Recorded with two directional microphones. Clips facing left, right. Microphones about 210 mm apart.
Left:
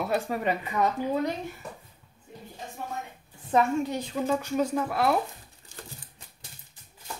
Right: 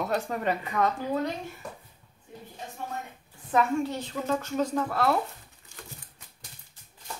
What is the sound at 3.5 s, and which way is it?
Speech, 30° left (ahead or behind).